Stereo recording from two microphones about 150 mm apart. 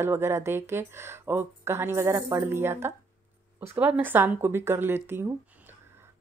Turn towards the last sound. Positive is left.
turn(degrees=-15)  # may be behind; listen again after turning